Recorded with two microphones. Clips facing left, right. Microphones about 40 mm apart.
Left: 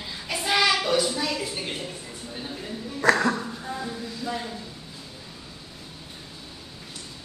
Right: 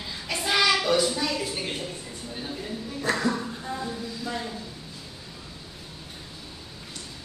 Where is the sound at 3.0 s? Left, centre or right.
Left.